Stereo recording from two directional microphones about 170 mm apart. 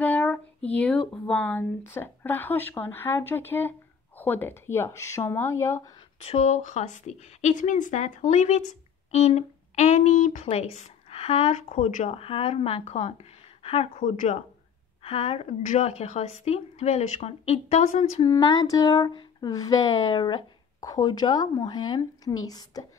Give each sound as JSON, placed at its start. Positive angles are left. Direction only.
{"t": 0.0, "sound": "speech", "side_deg": 10}
{"t": 6.2, "sound": "a woman's voice", "side_deg": 40}
{"t": 18.2, "sound": "speech", "side_deg": 25}